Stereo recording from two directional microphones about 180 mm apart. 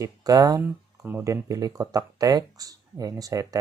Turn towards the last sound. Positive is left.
turn(degrees=-20)  # may be behind; listen again after turning